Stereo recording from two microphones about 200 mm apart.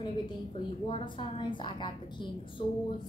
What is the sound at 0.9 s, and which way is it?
A woman's voice, 25° left (ahead or behind).